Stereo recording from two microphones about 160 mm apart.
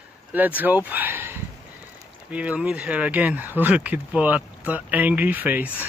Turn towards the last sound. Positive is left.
turn(degrees=-10)  # may be behind; listen again after turning